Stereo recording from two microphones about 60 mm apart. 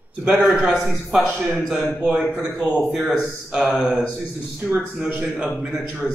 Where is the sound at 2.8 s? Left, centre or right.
Centre.